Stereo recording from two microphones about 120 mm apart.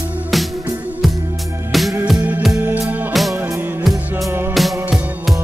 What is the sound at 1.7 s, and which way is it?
Music, centre (ahead or behind).